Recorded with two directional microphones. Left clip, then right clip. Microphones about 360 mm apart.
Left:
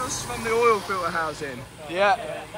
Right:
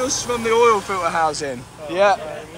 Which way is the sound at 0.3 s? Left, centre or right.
Centre.